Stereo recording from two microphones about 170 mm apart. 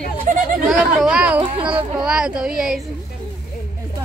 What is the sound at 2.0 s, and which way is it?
Speech, 5° right (ahead or behind).